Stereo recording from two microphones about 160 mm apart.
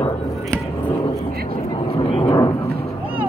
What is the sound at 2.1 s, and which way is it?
Vehicle, 30° left (ahead or behind).